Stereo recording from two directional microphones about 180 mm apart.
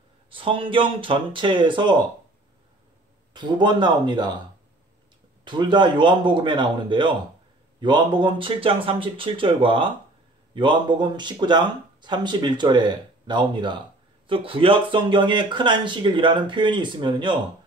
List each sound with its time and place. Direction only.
0.3 s speech: 30° right (ahead or behind)
3.3 s speech: 25° right (ahead or behind)
5.4 s speech: 25° right (ahead or behind)